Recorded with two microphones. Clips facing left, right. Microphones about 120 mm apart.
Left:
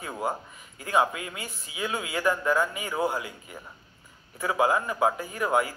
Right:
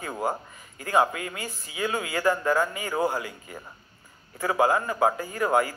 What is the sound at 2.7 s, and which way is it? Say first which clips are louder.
Speech: right 2 dB; 15° left (ahead or behind).